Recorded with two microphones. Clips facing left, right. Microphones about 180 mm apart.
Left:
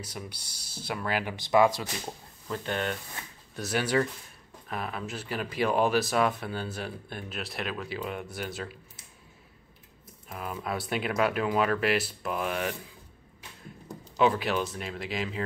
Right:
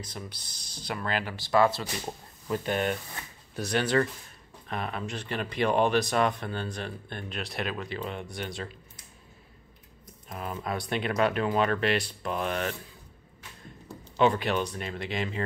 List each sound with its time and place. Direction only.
0.0 s speech: 10° left (ahead or behind)
1.3 s speech: 20° left (ahead or behind)
2.0 s speech: 15° right (ahead or behind)
3.5 s speech: 5° left (ahead or behind)
10.2 s speech: 5° left (ahead or behind)
14.1 s speech: 5° left (ahead or behind)